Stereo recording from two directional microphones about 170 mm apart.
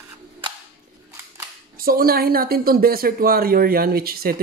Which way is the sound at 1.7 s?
60° right (ahead or behind).